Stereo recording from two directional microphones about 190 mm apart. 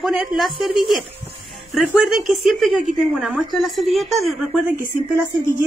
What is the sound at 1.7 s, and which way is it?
Speech, centre (ahead or behind).